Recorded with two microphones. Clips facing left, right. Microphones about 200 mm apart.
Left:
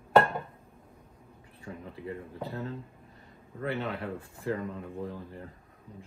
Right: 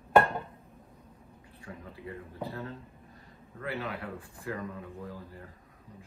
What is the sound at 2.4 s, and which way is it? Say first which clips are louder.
Speech: left 3 dB; 25° left (ahead or behind).